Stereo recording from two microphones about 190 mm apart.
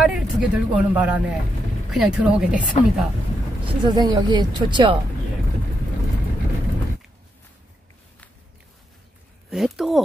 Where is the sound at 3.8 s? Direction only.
25° right (ahead or behind).